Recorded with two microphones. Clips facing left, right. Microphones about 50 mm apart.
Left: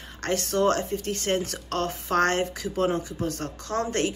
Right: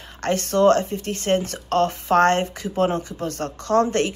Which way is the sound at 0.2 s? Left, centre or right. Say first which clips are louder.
Right 6 dB; right.